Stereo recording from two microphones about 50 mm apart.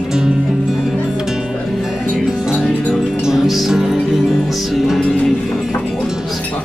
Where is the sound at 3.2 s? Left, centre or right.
Centre.